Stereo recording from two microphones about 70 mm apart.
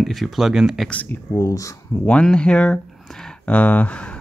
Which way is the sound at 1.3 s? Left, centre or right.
Left.